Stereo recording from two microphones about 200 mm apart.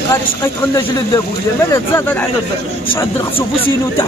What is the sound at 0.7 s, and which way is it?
Speech, 20° left (ahead or behind).